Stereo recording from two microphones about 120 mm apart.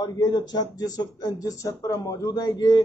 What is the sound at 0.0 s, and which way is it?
Speech, 35° left (ahead or behind).